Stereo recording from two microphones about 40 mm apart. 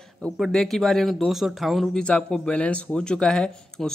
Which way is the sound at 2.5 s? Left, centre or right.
Left.